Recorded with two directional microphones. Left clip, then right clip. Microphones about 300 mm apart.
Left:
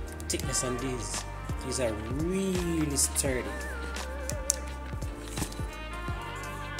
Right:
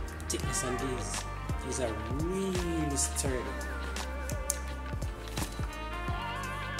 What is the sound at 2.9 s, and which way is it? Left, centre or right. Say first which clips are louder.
Speech: left 3 dB; left.